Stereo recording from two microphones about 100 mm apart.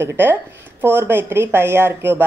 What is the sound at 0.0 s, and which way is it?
A woman's voice, 25° right (ahead or behind).